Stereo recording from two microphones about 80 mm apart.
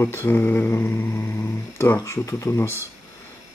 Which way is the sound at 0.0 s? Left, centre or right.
Left.